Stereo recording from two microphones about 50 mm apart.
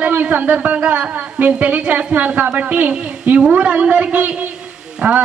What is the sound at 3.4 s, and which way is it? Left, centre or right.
Speech, centre.